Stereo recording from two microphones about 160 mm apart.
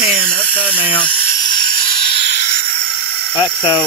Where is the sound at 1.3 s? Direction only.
25° left (ahead or behind).